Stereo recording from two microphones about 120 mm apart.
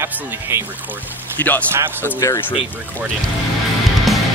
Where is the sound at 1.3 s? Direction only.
15° left (ahead or behind).